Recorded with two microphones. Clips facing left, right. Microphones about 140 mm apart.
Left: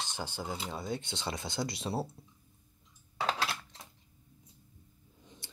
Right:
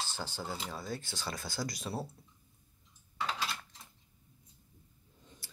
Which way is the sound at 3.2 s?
85° left.